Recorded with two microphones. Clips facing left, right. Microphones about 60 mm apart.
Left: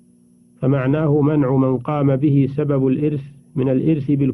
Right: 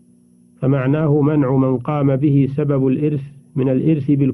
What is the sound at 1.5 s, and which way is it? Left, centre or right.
A man's voice, right.